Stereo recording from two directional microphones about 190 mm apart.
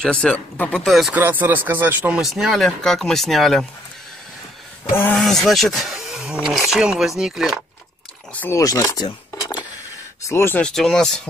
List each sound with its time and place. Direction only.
0.0 s speech: 5° left (ahead or behind)
4.9 s speech: 5° left (ahead or behind)
8.3 s speech: 10° left (ahead or behind)